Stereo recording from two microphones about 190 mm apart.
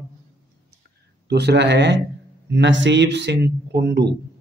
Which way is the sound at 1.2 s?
60° right (ahead or behind).